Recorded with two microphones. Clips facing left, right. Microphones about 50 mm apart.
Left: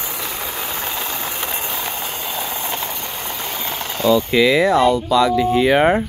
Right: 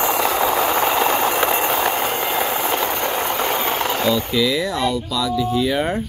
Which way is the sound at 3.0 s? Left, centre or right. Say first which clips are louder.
Right 7 dB; right.